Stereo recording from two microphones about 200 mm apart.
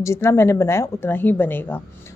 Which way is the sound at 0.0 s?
15° left (ahead or behind).